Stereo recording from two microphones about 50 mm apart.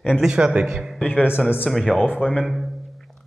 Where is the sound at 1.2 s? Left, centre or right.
Right.